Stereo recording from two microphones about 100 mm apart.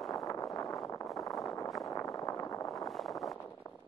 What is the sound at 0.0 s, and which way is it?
Vehicle, centre (ahead or behind).